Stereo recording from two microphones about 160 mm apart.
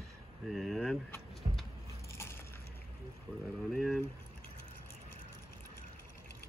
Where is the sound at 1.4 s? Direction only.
35° right (ahead or behind).